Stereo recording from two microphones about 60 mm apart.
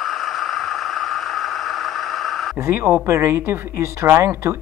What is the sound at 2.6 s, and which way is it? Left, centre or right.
Speech, right.